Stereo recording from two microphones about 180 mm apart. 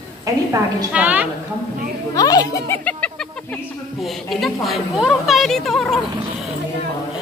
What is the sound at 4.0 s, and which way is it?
A woman's voice, centre (ahead or behind).